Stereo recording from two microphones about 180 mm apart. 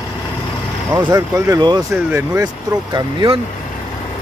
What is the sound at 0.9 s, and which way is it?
Speech, 15° right (ahead or behind).